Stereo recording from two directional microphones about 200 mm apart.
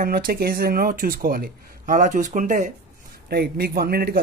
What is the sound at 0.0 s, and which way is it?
Speech, 45° right (ahead or behind).